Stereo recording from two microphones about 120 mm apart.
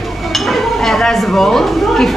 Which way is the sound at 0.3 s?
Centre (ahead or behind).